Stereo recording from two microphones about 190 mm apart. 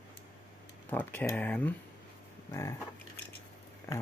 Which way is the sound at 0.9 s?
10° left (ahead or behind).